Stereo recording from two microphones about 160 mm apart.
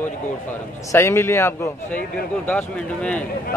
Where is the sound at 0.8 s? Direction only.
15° left (ahead or behind).